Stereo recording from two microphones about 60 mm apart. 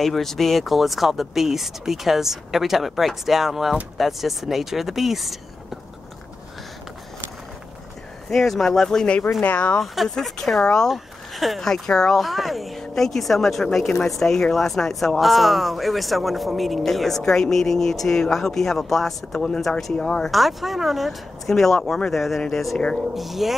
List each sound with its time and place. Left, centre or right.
0.0 s speech: centre
8.3 s speech: centre
9.4 s speech: left
9.8 s speech: centre
20.2 s speech: centre